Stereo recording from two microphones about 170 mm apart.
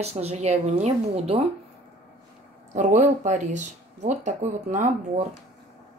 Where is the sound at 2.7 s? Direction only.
45° right (ahead or behind).